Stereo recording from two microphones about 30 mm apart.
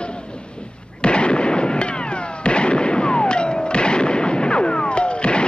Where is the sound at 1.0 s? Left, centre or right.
Left.